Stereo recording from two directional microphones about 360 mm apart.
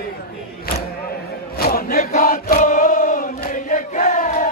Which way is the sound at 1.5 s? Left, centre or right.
Left.